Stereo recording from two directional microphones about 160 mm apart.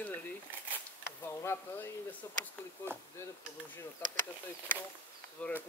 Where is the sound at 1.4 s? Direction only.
15° left (ahead or behind).